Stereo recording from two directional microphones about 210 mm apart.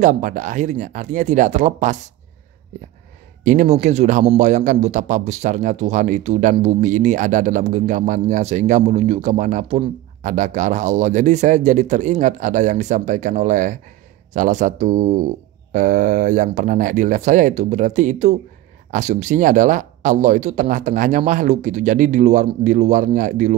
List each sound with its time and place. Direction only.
0.0 s a man's voice: 35° right (ahead or behind)
3.4 s a man's voice: 35° right (ahead or behind)